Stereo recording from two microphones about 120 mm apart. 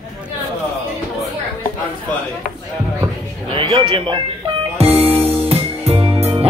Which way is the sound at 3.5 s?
50° right (ahead or behind).